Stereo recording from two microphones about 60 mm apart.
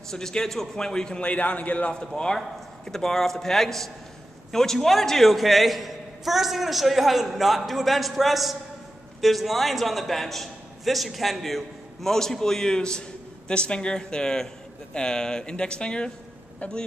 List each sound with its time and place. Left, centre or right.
0.1 s a man's voice: centre